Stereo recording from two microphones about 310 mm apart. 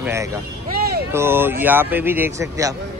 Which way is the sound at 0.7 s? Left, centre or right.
Right.